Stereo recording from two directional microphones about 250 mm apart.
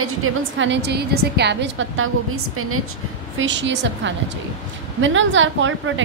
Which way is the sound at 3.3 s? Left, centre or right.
Right.